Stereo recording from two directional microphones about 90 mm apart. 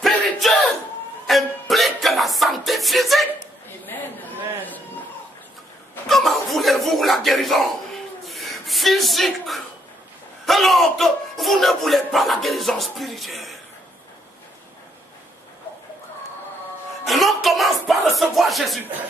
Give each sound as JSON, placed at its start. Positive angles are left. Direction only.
{"t": 0.0, "sound": "battle cry", "side_deg": 0}
{"t": 1.2, "sound": "music", "side_deg": 0}
{"t": 3.8, "sound": "chatter", "side_deg": 20}
{"t": 6.0, "sound": "a sound", "side_deg": 0}
{"t": 17.0, "sound": "music", "side_deg": 0}